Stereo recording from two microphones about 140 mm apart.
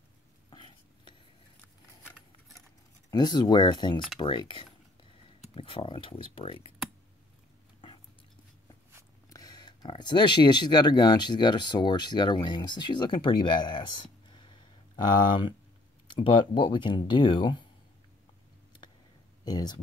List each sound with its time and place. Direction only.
0.5 s chopping: 35° left (ahead or behind)
3.1 s speech: 30° left (ahead or behind)
9.3 s speech: 25° left (ahead or behind)
19.4 s speech: 30° left (ahead or behind)